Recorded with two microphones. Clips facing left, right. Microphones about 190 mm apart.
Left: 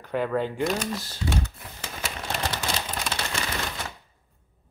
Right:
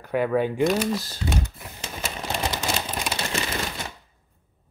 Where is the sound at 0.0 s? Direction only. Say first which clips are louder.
Right 3 dB; 10° right (ahead or behind).